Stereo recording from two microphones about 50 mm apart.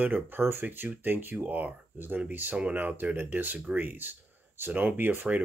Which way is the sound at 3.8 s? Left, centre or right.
Right.